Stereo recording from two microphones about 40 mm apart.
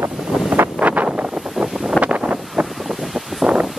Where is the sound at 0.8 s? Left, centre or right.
Right.